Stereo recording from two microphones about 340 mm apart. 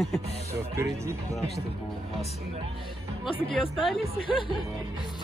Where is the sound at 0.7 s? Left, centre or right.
Centre.